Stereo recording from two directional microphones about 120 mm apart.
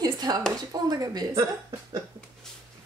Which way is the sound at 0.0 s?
35° right (ahead or behind).